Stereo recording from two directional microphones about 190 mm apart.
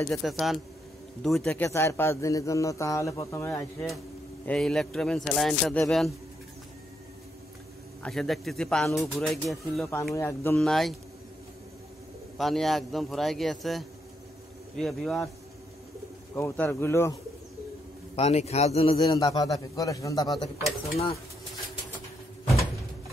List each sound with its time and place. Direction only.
0.0 s speech: centre (ahead or behind)
1.5 s a man's voice: 10° left (ahead or behind)
4.5 s speech: 5° left (ahead or behind)
8.0 s speech: centre (ahead or behind)
10.1 s a man's voice: 15° left (ahead or behind)
10.7 s speech: centre (ahead or behind)
12.4 s speech: centre (ahead or behind)
16.3 s a man's voice: 10° left (ahead or behind)
18.1 s a man's voice: 35° left (ahead or behind)
19.0 s a man's voice: 20° left (ahead or behind)